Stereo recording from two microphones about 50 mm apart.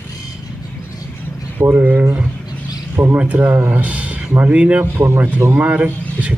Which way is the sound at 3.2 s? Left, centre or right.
Right.